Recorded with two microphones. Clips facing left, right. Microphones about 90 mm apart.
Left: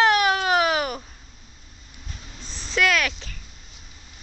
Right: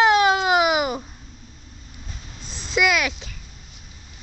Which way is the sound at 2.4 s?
15° right (ahead or behind).